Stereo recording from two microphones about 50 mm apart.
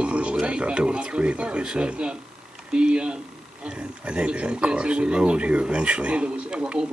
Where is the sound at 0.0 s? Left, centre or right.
Right.